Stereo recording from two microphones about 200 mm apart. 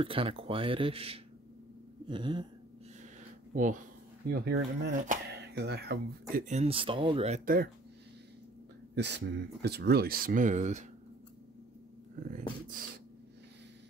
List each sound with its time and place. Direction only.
0.0 s speech: 25° right (ahead or behind)
3.5 s speech: 40° right (ahead or behind)
4.3 s speech: 50° right (ahead or behind)
5.0 s speech: 40° right (ahead or behind)
5.4 s speech: 55° right (ahead or behind)
6.3 s speech: 35° right (ahead or behind)
7.4 s speech: 50° right (ahead or behind)
8.9 s speech: 60° right (ahead or behind); by 10.9 s 35° right (ahead or behind)
12.2 s speech: 45° right (ahead or behind)